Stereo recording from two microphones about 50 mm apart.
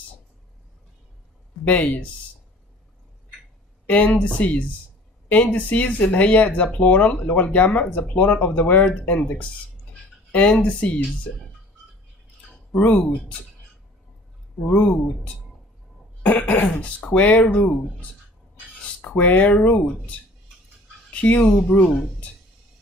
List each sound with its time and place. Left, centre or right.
1.6 s speech: left
3.8 s speech: left
12.8 s speech: left
14.7 s speech: left
16.2 s cough: left
16.8 s speech: left
18.9 s speech: left